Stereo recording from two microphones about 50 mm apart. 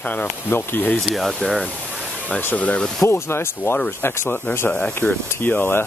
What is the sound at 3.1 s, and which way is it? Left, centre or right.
Speech, left.